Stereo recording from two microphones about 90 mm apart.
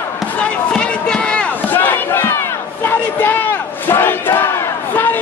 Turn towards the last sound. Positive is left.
turn(degrees=25)  # may be behind; listen again after turning